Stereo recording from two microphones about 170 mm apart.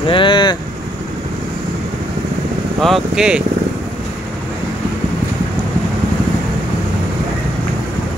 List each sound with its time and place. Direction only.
0.1 s speech: 30° left (ahead or behind)
2.8 s speech: centre (ahead or behind)